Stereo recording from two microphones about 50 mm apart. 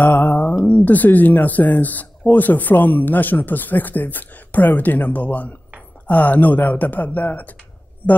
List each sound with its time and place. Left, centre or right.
0.0 s speech: left